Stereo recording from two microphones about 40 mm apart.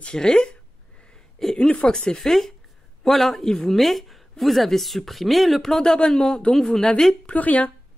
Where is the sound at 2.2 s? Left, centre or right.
Centre.